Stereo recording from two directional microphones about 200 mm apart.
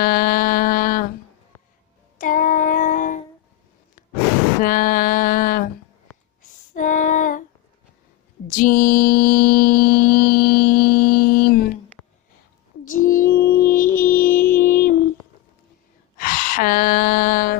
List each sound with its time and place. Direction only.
0.0 s a sound: 45° left (ahead or behind)
2.1 s child singing: 40° left (ahead or behind)
4.6 s a sound: 45° left (ahead or behind)
6.7 s female singing: 40° left (ahead or behind)
8.5 s mantra: 45° left (ahead or behind)
12.8 s music: 40° left (ahead or behind)
16.2 s sigh: 45° left (ahead or behind)